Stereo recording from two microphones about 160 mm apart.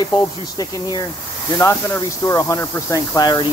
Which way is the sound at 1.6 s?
20° left (ahead or behind).